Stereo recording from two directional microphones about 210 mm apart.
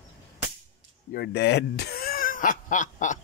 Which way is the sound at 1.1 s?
50° left (ahead or behind).